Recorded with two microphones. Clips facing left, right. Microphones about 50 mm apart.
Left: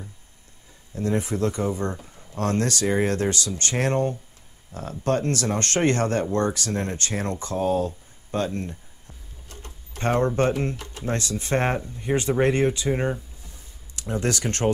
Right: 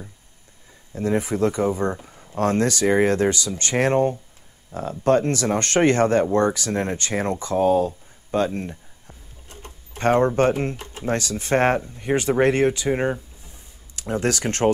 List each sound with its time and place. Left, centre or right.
0.9 s speech: right
7.4 s a sound: right
9.9 s speech: right
10.7 s speech: centre
11.3 s speech: right
12.5 s speech: right